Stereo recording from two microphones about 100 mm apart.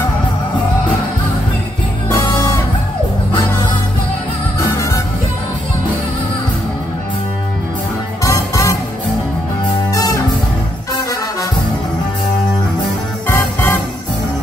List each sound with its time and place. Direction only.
2.2 s music: 40° left (ahead or behind)
4.7 s music: 30° left (ahead or behind)
8.2 s music: 35° left (ahead or behind)
13.3 s music: 25° left (ahead or behind)